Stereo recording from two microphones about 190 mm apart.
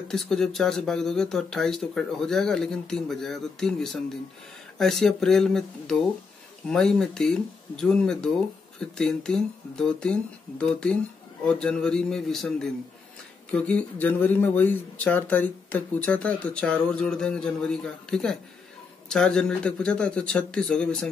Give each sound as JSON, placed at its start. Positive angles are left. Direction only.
{"t": 0.1, "sound": "speech", "side_deg": 0}